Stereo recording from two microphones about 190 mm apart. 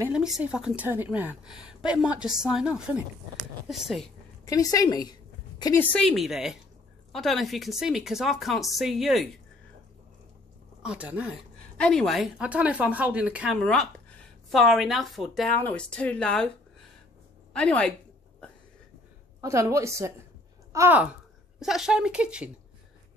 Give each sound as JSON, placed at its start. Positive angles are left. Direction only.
{"t": 0.0, "sound": "a woman's voice", "side_deg": -5}
{"t": 4.5, "sound": "a woman's voice", "side_deg": 20}
{"t": 5.9, "sound": "a woman's voice", "side_deg": 0}
{"t": 10.8, "sound": "a woman's voice", "side_deg": -5}
{"t": 17.5, "sound": "a woman's voice", "side_deg": 5}
{"t": 19.4, "sound": "a woman's voice", "side_deg": -15}